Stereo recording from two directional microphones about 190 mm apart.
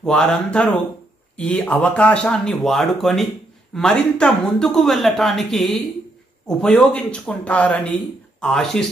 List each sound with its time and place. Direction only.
0.0 s speech: 5° left (ahead or behind)